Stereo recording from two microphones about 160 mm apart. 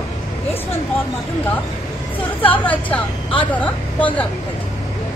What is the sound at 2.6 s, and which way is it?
A woman's voice, 10° left (ahead or behind).